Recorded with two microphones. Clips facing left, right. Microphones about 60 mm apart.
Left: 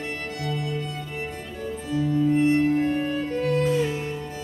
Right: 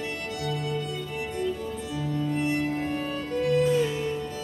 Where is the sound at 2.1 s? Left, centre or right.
Centre.